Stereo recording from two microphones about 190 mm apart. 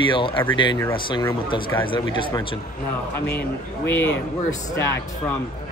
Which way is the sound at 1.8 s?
25° left (ahead or behind).